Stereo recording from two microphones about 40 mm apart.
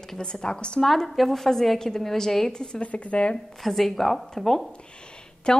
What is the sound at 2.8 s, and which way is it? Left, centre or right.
Speech, left.